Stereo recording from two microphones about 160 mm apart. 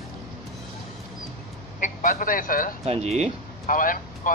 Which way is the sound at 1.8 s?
55° left (ahead or behind).